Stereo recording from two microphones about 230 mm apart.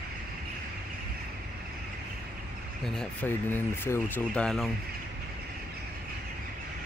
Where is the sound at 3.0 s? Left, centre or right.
Centre.